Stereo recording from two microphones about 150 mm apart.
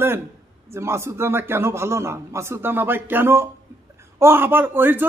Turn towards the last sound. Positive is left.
turn(degrees=-15)  # may be behind; listen again after turning